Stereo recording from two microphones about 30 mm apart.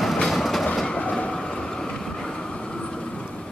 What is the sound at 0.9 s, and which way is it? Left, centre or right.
Train, left.